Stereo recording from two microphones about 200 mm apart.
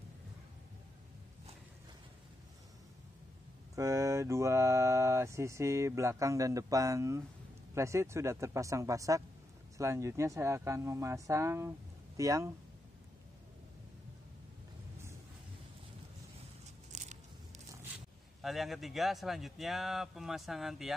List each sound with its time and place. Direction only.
3.7 s mantra: 15° right (ahead or behind)
16.9 s a sound: 35° right (ahead or behind)
18.4 s speech: centre (ahead or behind)